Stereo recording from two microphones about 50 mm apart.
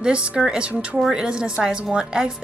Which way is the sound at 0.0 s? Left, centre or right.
Centre.